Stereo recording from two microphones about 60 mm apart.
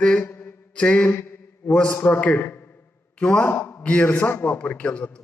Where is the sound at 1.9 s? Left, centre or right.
Left.